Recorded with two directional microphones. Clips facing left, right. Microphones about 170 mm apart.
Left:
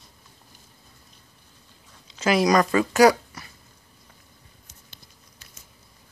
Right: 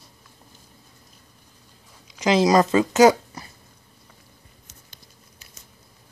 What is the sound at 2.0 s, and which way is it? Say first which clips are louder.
Speech: right 2 dB; 15° right (ahead or behind).